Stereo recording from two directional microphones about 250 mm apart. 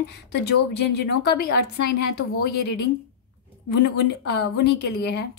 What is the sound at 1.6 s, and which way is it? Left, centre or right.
Speech, left.